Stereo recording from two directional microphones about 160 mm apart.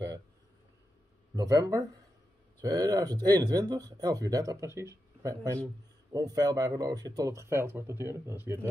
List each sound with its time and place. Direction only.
1.3 s speech: 20° right (ahead or behind)